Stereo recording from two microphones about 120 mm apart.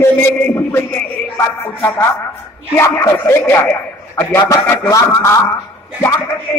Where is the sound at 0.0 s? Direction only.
15° left (ahead or behind).